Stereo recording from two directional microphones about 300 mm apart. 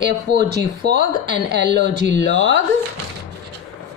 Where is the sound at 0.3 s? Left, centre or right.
Right.